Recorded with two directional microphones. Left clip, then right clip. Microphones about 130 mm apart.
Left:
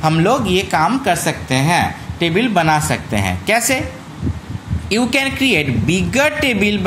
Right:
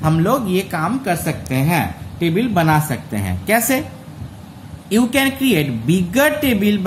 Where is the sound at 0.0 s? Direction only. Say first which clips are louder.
Left 3 dB; 25° left (ahead or behind).